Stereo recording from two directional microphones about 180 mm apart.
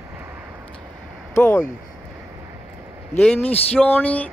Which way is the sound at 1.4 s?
10° left (ahead or behind).